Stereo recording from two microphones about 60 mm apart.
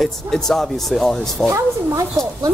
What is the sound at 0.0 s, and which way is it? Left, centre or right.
Speech, centre.